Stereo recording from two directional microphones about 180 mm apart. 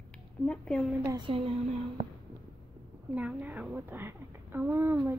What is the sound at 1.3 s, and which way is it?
Speech, 30° right (ahead or behind).